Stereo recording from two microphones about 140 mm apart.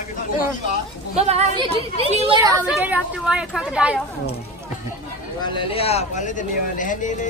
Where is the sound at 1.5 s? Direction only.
40° right (ahead or behind).